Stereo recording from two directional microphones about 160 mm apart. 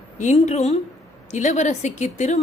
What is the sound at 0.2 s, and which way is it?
A woman's voice, 45° left (ahead or behind).